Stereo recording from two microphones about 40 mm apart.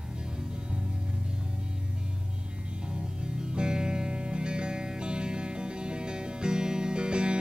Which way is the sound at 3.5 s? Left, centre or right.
Right.